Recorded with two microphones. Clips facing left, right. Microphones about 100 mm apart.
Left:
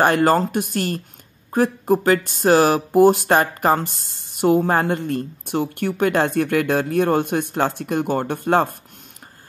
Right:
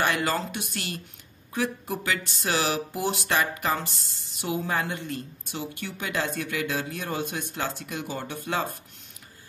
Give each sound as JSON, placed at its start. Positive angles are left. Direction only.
{"t": 0.0, "sound": "speech", "side_deg": 45}